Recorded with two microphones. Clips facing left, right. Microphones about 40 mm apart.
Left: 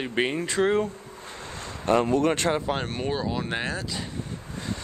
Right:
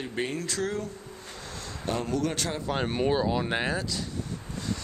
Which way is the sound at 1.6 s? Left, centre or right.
Left.